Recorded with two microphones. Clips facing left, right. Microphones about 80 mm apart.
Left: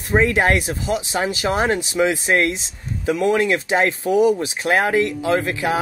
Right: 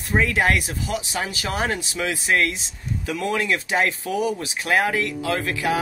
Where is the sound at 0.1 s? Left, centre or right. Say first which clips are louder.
Left 4 dB; left.